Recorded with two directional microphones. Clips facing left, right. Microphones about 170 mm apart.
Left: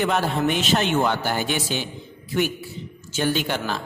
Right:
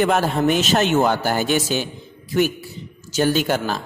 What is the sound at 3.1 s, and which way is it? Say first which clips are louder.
Speech: right 5 dB; 40° right (ahead or behind).